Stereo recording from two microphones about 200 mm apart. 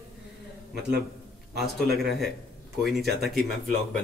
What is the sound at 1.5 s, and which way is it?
Speech, centre (ahead or behind).